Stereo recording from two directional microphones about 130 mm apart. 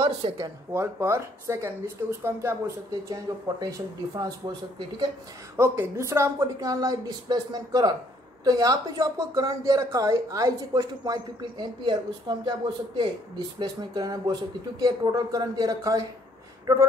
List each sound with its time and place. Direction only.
0.4 s speech: 20° right (ahead or behind)
5.6 s speech: 20° right (ahead or behind)